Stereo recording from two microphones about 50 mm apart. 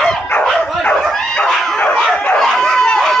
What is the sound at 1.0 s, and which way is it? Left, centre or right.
Bow-wow, centre.